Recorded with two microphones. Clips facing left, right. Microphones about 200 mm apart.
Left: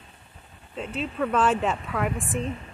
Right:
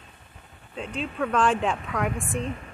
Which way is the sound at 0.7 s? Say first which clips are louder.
Left 1 dB; 5° left (ahead or behind).